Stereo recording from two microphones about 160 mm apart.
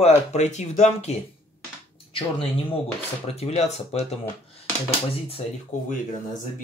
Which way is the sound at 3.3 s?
40° left (ahead or behind).